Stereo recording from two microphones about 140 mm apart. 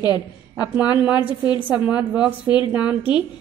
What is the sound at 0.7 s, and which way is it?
A woman's voice, 10° right (ahead or behind).